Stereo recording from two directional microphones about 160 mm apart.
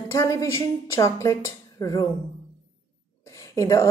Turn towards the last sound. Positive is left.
turn(degrees=20)  # may be behind; listen again after turning